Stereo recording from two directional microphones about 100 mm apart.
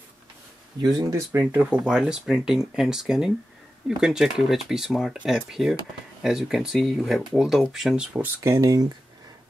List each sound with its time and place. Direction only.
0.8 s speech: 40° right (ahead or behind)
1.4 s speech: 10° right (ahead or behind)
8.4 s speech: 35° right (ahead or behind)